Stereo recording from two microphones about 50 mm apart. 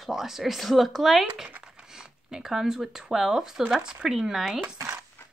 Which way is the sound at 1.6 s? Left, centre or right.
Centre.